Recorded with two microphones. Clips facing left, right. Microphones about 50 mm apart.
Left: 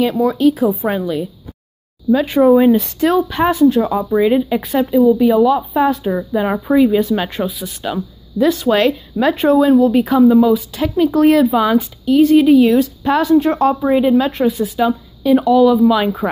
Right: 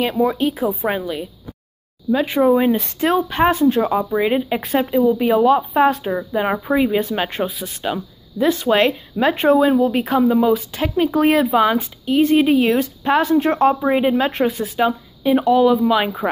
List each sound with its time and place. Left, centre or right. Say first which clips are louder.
0.2 s a woman's voice: left 4 dB; centre
2.1 s speech: left 4 dB; centre
2.7 s a woman's voice: left 4 dB; right
4.6 s speech: left 4 dB; right
6.0 s a woman's voice: left 3 dB; right
7.8 s a woman's voice: left 1 dB; centre; by 15.8 s right
15.8 s a woman's voice: left 4 dB; centre